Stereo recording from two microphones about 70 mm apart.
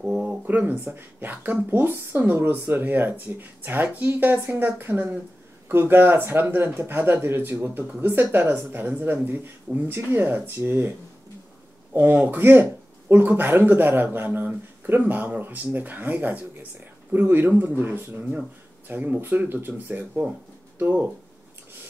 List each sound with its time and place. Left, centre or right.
0.0 s a sound: centre
0.5 s speech: right
12.0 s speech: right